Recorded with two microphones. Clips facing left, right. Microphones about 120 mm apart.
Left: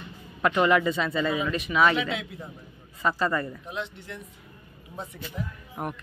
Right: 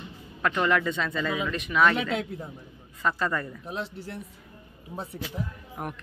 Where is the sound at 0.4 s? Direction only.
10° left (ahead or behind).